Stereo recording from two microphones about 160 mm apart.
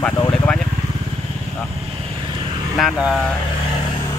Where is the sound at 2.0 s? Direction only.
30° right (ahead or behind).